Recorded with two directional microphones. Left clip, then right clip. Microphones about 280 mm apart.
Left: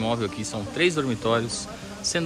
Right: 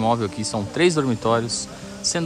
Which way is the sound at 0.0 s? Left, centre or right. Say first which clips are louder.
Right 5 dB; centre.